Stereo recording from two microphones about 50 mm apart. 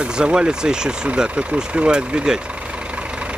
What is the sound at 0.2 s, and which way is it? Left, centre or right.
Speech, centre.